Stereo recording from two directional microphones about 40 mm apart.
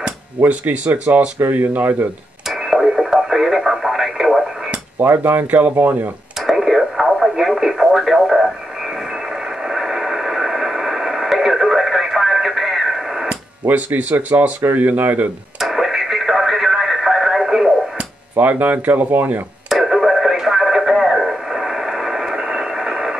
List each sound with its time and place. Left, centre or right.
0.4 s speech: right
0.8 s speech: right
1.4 s speech: right
1.7 s speech: right
2.4 s radio: centre
4.9 s speech: right
6.4 s radio: centre
13.7 s speech: right
15.6 s radio: centre
18.3 s speech: right
19.7 s radio: centre